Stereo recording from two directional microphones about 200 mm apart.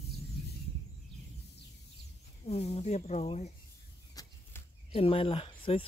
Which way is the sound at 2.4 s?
30° left (ahead or behind).